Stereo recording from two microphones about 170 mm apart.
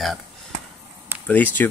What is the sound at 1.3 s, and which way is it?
Speech, 10° left (ahead or behind).